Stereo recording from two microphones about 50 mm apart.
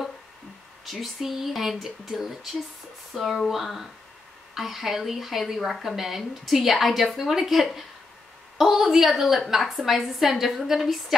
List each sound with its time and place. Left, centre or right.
0.8 s speech: centre